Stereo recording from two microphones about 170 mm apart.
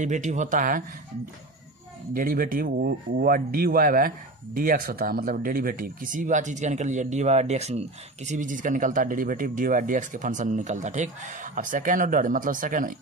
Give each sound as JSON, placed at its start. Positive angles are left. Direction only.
{"t": 0.0, "sound": "speech", "side_deg": -45}
{"t": 2.1, "sound": "speech", "side_deg": -55}
{"t": 8.3, "sound": "speech", "side_deg": -50}